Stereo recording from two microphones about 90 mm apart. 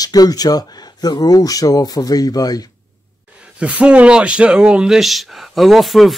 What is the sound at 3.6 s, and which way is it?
A man's voice, 15° right (ahead or behind).